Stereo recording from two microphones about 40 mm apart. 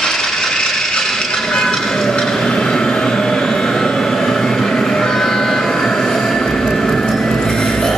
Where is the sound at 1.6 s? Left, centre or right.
Centre.